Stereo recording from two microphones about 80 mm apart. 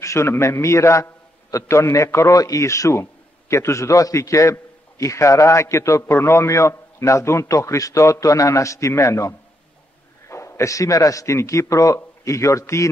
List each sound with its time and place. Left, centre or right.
0.0 s a man's voice: left